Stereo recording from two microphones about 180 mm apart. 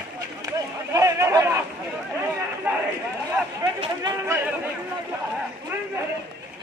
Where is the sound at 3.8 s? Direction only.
20° right (ahead or behind).